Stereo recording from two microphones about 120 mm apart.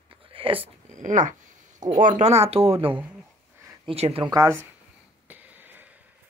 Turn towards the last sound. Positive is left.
turn(degrees=-15)  # may be behind; listen again after turning